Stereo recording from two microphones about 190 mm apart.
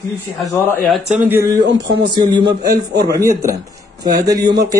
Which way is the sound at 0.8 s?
5° right (ahead or behind).